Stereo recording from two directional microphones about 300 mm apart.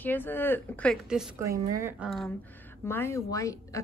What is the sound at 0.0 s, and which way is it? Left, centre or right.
A woman's voice, centre.